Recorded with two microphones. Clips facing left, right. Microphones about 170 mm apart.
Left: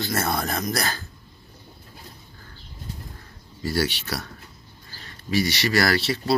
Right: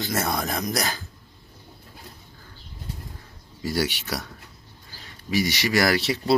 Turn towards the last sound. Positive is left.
turn(degrees=-15)  # may be behind; listen again after turning